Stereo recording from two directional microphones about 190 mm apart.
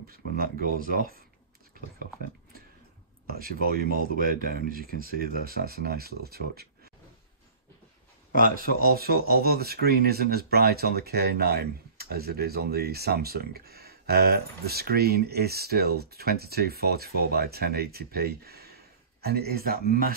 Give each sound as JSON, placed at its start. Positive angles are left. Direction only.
{"t": 0.4, "sound": "speech", "side_deg": -50}
{"t": 3.3, "sound": "speech", "side_deg": -50}
{"t": 8.5, "sound": "speech", "side_deg": -50}